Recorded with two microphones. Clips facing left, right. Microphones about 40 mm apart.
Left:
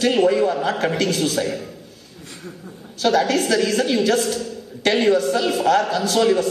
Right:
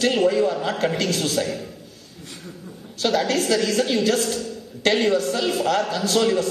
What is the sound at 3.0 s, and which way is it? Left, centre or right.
Speech, left.